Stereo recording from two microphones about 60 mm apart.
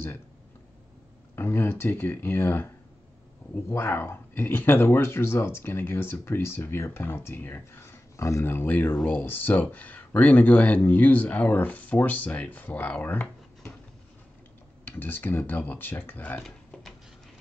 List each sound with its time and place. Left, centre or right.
1.3 s speech: left
8.2 s speech: left
8.5 s speech: left
14.9 s speech: left
16.4 s a sound: centre